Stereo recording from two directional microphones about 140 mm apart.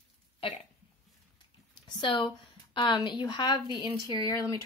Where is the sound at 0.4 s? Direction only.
40° left (ahead or behind).